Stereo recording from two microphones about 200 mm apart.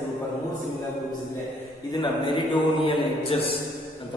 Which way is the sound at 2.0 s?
25° left (ahead or behind).